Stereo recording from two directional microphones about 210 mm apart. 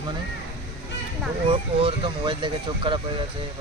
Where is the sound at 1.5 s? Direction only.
25° right (ahead or behind).